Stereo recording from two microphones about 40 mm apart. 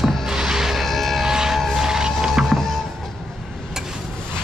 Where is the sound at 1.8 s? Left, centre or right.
Centre.